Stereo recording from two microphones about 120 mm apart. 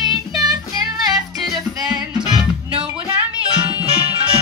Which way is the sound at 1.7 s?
35° right (ahead or behind).